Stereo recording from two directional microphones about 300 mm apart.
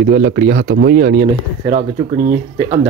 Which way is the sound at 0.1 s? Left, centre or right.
Right.